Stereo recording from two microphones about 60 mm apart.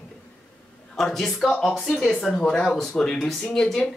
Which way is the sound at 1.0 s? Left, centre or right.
Centre.